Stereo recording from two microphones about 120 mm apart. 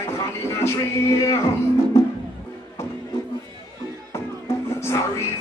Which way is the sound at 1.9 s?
25° left (ahead or behind).